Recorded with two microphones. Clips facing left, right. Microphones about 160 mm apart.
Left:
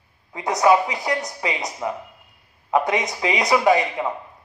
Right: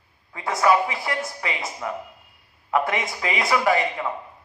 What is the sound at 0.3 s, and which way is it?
Speech, 20° left (ahead or behind).